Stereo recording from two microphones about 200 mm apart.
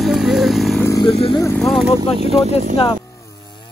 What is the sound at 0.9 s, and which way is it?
Speech, 25° left (ahead or behind).